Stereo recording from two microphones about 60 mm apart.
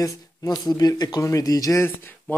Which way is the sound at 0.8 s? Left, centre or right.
Left.